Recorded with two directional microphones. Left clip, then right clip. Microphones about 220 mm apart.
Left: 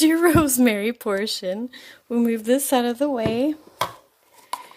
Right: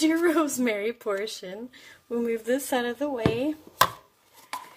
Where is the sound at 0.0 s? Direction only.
45° left (ahead or behind).